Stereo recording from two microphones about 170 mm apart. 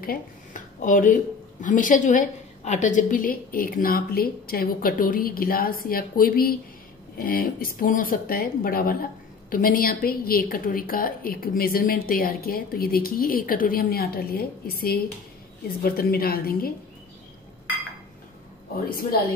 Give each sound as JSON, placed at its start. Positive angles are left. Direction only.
{"t": 0.0, "sound": "speech", "side_deg": 55}
{"t": 18.9, "sound": "speech", "side_deg": 60}